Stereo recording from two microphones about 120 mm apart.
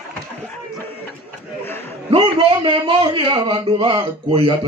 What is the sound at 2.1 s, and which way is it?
A man's voice, 45° right (ahead or behind).